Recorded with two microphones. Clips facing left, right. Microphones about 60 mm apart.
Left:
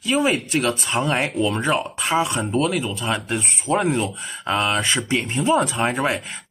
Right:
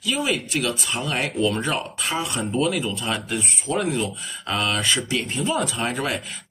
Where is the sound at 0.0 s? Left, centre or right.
Left.